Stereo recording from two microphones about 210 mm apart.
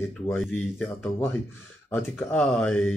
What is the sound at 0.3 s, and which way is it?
Speech, 5° left (ahead or behind).